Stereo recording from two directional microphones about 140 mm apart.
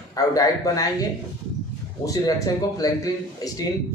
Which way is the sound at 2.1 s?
25° left (ahead or behind).